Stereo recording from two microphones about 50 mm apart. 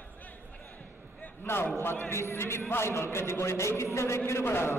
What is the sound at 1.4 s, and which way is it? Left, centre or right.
A man's voice, left.